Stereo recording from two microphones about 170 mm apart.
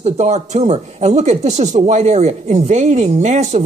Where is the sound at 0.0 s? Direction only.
40° right (ahead or behind).